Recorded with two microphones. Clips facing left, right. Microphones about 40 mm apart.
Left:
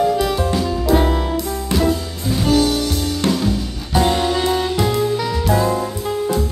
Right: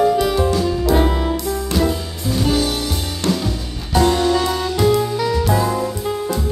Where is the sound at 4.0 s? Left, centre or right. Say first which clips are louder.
Right 2 dB; centre.